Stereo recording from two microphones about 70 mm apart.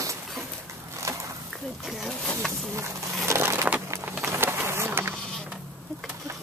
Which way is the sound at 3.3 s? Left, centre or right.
Right.